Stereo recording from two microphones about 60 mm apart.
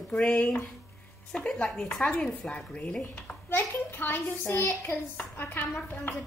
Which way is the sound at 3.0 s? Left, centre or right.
Left.